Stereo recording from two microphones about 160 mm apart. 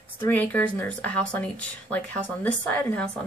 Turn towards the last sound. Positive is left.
turn(degrees=10)  # may be behind; listen again after turning